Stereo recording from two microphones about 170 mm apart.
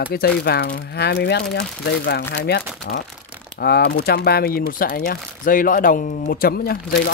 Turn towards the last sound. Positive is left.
turn(degrees=65)  # may be behind; listen again after turning